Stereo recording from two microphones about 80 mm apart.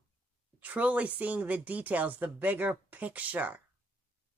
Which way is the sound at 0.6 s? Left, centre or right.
Centre.